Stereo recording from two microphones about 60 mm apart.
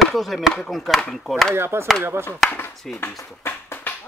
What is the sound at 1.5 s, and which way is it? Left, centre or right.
Speech, right.